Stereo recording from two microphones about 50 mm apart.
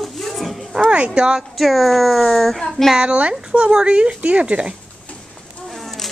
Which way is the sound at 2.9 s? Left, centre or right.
Right.